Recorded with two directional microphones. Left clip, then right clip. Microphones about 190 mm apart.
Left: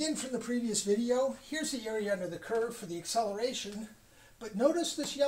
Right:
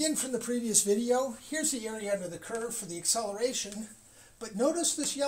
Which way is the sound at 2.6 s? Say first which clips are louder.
Right 3 dB; 25° right (ahead or behind).